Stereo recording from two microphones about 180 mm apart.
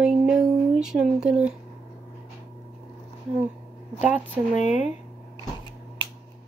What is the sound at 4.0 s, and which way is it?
Speech, 10° right (ahead or behind).